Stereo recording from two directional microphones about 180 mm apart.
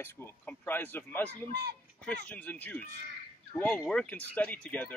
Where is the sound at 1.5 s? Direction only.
60° right (ahead or behind).